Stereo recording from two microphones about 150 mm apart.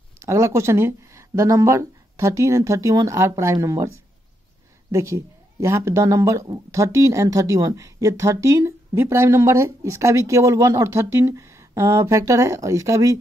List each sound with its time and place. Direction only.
0.2 s speech: 20° right (ahead or behind)